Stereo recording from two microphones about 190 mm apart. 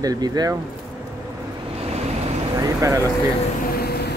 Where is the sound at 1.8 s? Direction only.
35° right (ahead or behind).